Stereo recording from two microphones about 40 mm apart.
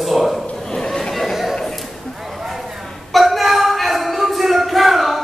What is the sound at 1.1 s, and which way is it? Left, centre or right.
Chatter, centre.